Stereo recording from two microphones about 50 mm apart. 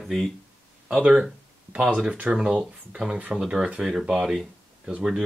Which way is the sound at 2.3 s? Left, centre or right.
Centre.